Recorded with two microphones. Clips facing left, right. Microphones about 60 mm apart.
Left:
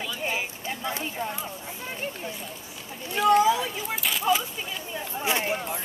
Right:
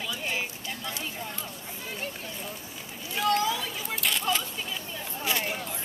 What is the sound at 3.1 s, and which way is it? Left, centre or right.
Speech, centre.